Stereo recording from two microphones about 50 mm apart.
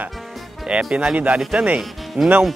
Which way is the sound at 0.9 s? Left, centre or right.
Centre.